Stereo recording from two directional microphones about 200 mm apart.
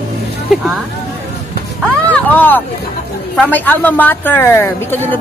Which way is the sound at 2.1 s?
10° left (ahead or behind).